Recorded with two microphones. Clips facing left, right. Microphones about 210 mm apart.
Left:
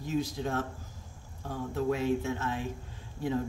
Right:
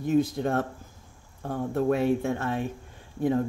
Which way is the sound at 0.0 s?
55° right (ahead or behind).